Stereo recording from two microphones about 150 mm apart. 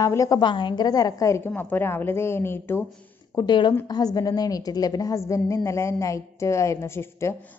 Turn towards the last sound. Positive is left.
turn(degrees=15)  # may be behind; listen again after turning